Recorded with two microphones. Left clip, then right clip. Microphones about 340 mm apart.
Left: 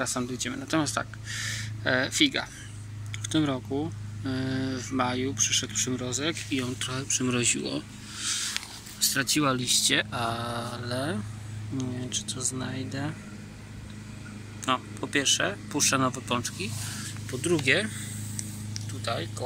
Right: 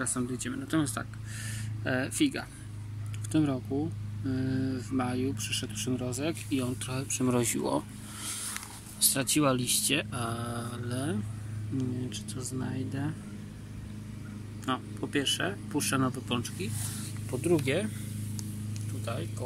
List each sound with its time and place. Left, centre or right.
0.0 s speech: centre; by 7.6 s right
9.0 s speech: centre
14.6 s speech: centre
18.7 s a sound: centre